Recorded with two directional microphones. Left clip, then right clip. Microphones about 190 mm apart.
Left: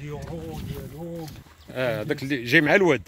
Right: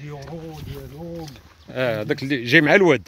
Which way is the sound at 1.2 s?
35° right (ahead or behind).